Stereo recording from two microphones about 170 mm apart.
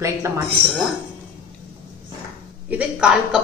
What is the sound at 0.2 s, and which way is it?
Speech, 15° right (ahead or behind).